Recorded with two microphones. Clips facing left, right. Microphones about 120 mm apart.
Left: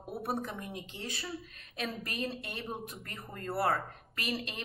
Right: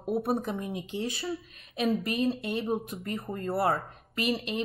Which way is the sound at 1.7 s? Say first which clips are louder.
Right 10 dB; 15° right (ahead or behind).